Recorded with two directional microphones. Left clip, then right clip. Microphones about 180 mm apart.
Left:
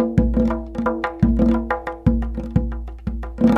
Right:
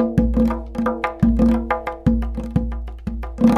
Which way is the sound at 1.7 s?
25° left (ahead or behind).